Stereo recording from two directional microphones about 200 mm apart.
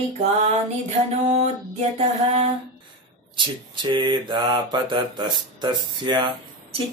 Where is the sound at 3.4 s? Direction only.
25° right (ahead or behind).